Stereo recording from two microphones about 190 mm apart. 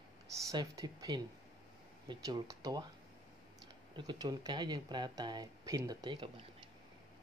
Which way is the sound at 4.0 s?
20° right (ahead or behind).